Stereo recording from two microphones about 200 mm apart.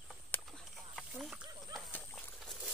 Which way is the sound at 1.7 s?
10° left (ahead or behind).